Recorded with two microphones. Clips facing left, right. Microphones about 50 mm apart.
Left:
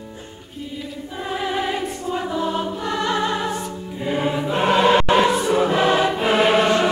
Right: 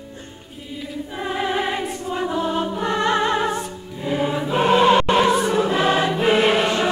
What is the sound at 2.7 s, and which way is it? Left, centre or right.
Music, right.